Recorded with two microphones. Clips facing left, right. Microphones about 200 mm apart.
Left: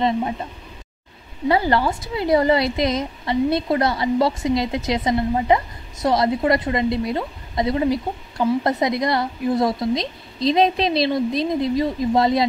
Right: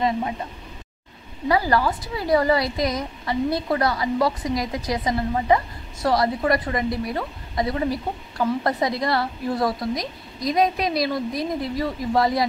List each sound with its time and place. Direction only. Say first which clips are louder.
1.5 s a woman's voice: left 2 dB; 25° left (ahead or behind)